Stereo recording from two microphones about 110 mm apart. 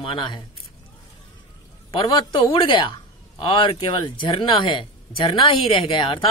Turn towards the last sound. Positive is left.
turn(degrees=50)  # may be behind; listen again after turning